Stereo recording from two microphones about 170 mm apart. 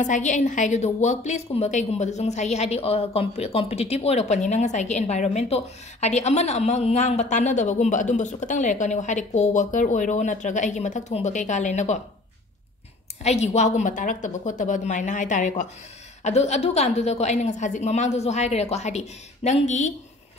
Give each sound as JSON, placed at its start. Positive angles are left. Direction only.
{"t": 0.0, "sound": "a woman's voice", "side_deg": 45}
{"t": 13.2, "sound": "a woman's voice", "side_deg": 40}